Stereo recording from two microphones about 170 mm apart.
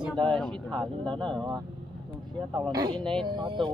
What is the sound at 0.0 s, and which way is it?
Speech, centre (ahead or behind).